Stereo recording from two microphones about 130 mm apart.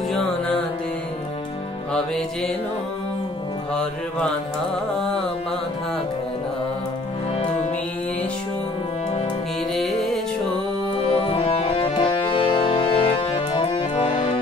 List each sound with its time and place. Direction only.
9.8 s music: centre (ahead or behind)
11.0 s music: 45° left (ahead or behind)